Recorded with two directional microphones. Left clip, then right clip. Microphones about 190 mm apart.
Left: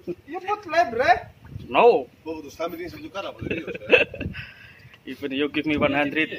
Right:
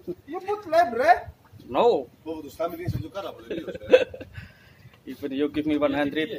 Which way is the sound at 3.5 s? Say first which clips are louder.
Even; 15° left (ahead or behind).